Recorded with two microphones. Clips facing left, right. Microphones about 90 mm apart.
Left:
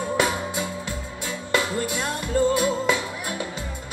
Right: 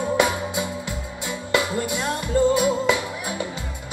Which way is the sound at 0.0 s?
15° right (ahead or behind).